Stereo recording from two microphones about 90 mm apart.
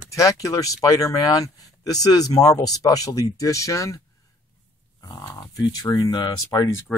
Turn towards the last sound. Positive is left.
turn(degrees=35)  # may be behind; listen again after turning